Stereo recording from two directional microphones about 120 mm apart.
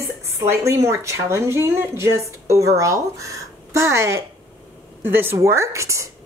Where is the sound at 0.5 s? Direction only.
25° right (ahead or behind).